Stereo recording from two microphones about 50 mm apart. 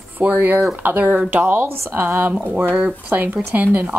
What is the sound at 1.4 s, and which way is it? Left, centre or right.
Speech, right.